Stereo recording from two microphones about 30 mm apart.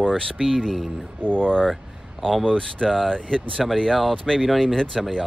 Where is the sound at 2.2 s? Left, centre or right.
Centre.